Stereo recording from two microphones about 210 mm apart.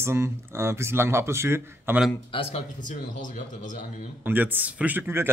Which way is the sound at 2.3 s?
25° left (ahead or behind).